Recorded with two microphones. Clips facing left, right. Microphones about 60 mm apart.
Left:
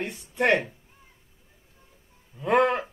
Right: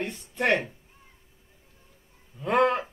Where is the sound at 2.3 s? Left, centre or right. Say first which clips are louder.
Left 1 dB; centre.